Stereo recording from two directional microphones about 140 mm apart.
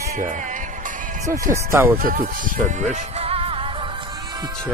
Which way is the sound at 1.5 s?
15° right (ahead or behind).